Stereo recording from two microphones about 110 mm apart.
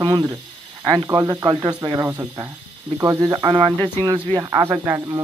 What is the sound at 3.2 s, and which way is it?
Speech, 40° right (ahead or behind).